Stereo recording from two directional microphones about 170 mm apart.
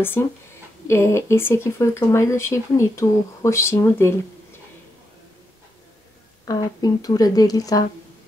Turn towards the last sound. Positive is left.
turn(degrees=20)  # may be behind; listen again after turning